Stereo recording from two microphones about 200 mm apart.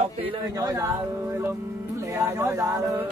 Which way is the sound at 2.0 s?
15° right (ahead or behind).